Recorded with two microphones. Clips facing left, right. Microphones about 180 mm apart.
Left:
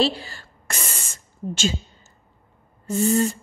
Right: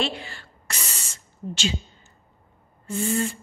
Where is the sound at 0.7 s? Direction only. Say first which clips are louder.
Left 4 dB; 50° left (ahead or behind).